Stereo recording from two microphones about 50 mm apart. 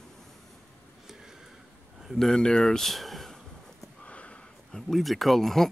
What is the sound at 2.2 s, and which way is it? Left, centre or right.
Speech, centre.